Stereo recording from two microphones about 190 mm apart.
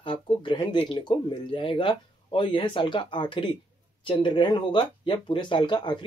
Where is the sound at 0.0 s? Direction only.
25° left (ahead or behind).